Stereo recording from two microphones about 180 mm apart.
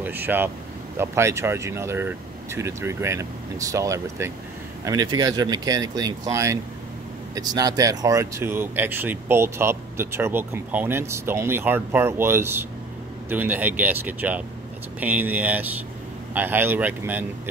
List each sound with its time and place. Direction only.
0.0 s speech: 10° right (ahead or behind)